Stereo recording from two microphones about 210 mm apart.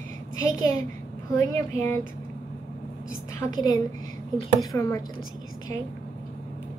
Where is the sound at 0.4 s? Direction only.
15° left (ahead or behind).